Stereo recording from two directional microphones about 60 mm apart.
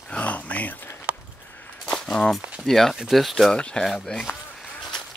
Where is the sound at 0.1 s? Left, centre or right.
Left.